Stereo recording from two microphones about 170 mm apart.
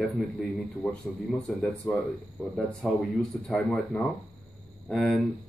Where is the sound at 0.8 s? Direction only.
5° left (ahead or behind).